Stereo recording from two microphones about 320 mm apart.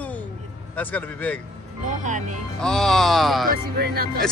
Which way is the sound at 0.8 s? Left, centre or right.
Centre.